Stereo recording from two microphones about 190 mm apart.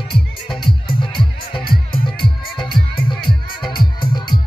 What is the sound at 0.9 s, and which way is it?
Music, 25° left (ahead or behind).